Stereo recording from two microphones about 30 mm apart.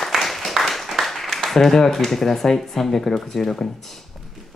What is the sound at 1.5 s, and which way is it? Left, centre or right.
Speech, centre.